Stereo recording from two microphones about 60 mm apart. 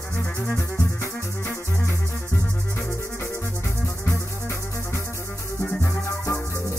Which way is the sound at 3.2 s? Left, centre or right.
Left.